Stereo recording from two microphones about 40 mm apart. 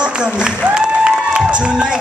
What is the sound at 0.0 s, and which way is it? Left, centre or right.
Music, right.